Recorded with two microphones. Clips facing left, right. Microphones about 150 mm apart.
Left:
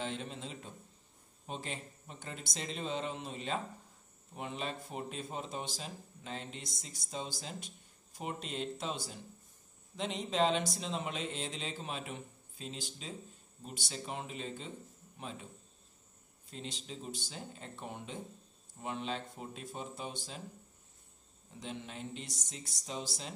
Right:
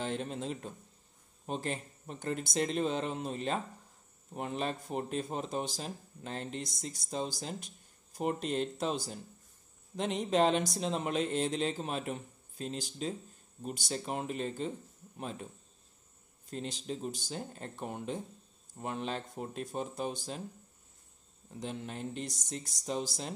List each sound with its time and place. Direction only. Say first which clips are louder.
0.0 s speech: right 5 dB; 50° right (ahead or behind)
9.9 s speech: right 4 dB; 55° right (ahead or behind)
16.4 s speech: right 7 dB; 50° right (ahead or behind)
21.5 s speech: right 4 dB; 50° right (ahead or behind)